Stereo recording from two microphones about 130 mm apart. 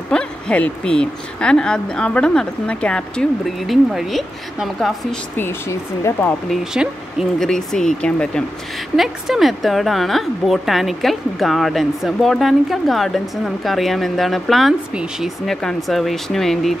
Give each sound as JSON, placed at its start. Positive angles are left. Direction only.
{"t": 0.1, "sound": "a woman's voice", "side_deg": 5}
{"t": 5.4, "sound": "speech", "side_deg": 20}
{"t": 6.5, "sound": "a woman's voice", "side_deg": -5}